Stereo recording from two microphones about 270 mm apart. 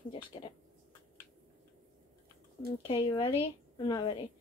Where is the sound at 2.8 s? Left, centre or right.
Centre.